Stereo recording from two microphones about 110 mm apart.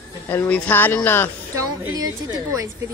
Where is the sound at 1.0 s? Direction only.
20° left (ahead or behind).